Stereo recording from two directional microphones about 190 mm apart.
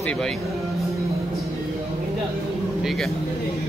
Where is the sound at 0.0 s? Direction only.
5° left (ahead or behind).